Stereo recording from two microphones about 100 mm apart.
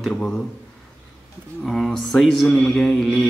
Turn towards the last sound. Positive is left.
turn(degrees=0)  # may be behind; listen again after turning